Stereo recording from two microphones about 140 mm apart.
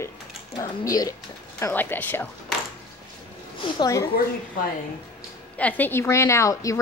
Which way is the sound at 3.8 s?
25° left (ahead or behind).